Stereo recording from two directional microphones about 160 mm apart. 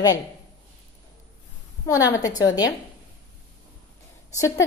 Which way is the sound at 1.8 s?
20° left (ahead or behind).